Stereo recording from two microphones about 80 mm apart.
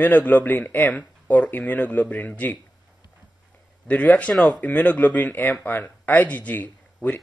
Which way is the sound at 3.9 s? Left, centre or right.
Centre.